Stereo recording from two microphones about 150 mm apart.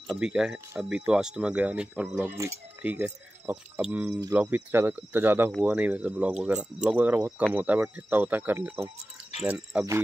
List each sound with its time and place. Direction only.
0.1 s speech: 5° right (ahead or behind)
4.1 s speech: 20° right (ahead or behind)